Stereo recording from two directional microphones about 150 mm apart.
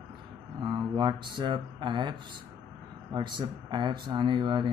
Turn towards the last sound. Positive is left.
turn(degrees=-30)  # may be behind; listen again after turning